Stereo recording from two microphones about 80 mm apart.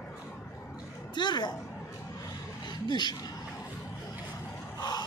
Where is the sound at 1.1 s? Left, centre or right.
Left.